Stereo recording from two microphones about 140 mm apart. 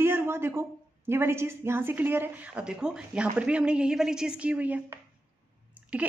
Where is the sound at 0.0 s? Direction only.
15° right (ahead or behind).